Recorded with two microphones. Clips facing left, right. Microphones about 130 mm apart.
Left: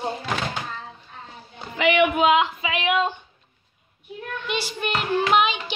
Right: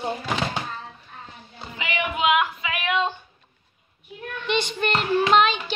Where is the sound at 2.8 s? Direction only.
5° left (ahead or behind).